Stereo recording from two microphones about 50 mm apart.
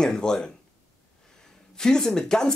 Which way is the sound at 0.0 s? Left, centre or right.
Centre.